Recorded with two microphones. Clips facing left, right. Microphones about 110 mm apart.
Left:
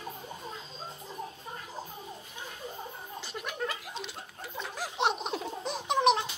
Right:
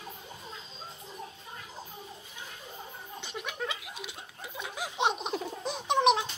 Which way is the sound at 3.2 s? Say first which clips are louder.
Left 1 dB; centre (ahead or behind).